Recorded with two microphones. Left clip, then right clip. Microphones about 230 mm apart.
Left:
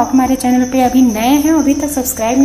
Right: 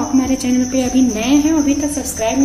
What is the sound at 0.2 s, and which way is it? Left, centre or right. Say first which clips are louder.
A woman's voice: left 4 dB; left.